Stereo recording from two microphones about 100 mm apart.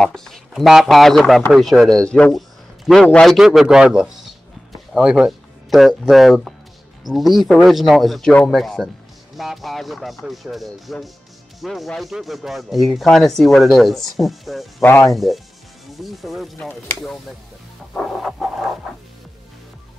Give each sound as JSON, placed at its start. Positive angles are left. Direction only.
{"t": 0.0, "sound": "speech", "side_deg": 5}
{"t": 14.8, "sound": "speech", "side_deg": 20}
{"t": 15.0, "sound": "speech", "side_deg": 0}
{"t": 17.9, "sound": "speech", "side_deg": 0}